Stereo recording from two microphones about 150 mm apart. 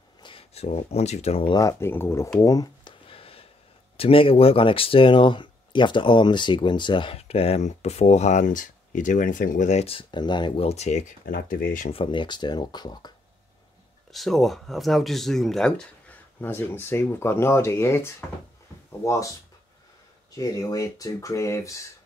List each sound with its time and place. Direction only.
0.2 s speech: 40° left (ahead or behind)
1.5 s speech: 20° left (ahead or behind)
3.1 s a sound: 40° left (ahead or behind)
3.9 s speech: 40° left (ahead or behind); by 11.9 s 65° left (ahead or behind)
11.9 s speech: 35° left (ahead or behind)
14.1 s speech: centre (ahead or behind); by 19.3 s 20° left (ahead or behind)
20.3 s speech: 25° left (ahead or behind)